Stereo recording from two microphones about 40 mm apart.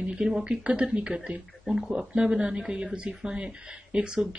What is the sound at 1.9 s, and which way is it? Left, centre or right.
Speech, right.